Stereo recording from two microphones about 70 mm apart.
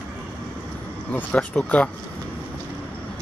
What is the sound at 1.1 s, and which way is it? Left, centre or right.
Speech, centre.